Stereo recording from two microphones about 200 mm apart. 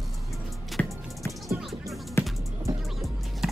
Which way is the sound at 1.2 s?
10° left (ahead or behind).